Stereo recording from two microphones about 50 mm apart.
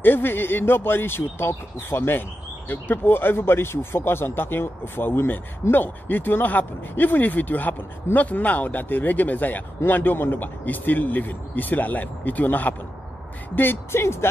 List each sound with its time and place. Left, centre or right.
0.0 s speech: left
13.6 s speech: left